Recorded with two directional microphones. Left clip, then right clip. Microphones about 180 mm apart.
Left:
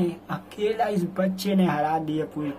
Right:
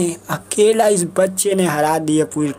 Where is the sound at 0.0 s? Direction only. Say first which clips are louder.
Right 7 dB; 30° right (ahead or behind).